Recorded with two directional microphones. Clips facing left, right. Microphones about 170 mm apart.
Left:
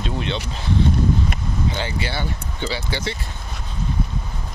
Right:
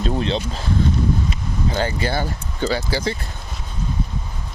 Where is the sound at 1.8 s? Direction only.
45° right (ahead or behind).